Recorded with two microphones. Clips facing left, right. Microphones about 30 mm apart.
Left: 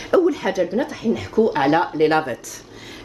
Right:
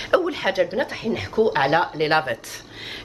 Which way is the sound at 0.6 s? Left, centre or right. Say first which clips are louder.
Left 1 dB; right.